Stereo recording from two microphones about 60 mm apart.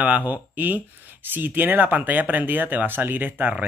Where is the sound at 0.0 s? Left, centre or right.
Right.